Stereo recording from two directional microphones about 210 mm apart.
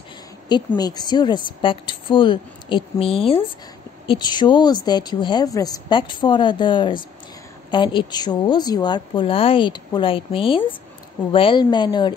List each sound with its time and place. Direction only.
0.7 s a woman's voice: 20° left (ahead or behind)